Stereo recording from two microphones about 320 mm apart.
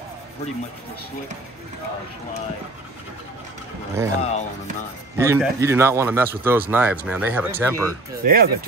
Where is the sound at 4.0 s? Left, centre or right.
Centre.